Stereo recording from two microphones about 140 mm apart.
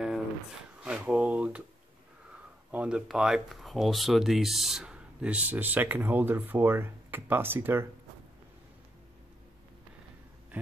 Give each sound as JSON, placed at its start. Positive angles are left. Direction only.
{"t": 0.8, "sound": "speech", "side_deg": -10}
{"t": 2.7, "sound": "speech", "side_deg": -5}
{"t": 10.5, "sound": "a sound", "side_deg": -10}